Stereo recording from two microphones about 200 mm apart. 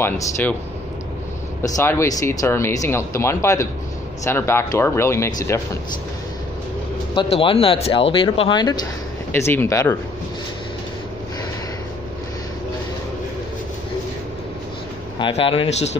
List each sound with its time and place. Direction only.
0.0 s speech: 10° left (ahead or behind)
1.6 s speech: 15° left (ahead or behind)
7.2 s speech: 25° left (ahead or behind)
9.3 s speech: 10° left (ahead or behind)
15.1 s speech: 25° left (ahead or behind)